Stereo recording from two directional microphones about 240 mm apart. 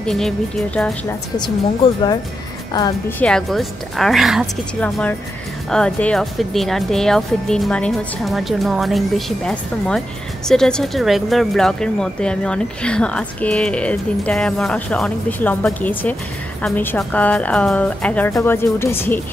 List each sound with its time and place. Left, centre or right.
0.0 s speech: centre
2.7 s a woman's voice: centre
3.3 s a woman's voice: centre